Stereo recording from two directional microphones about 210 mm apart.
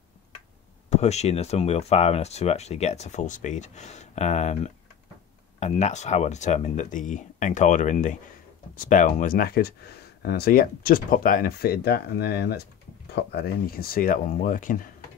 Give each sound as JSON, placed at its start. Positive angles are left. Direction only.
{"t": 0.8, "sound": "speech", "side_deg": 30}